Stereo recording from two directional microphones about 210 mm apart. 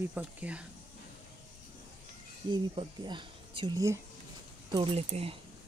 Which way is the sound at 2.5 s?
20° right (ahead or behind).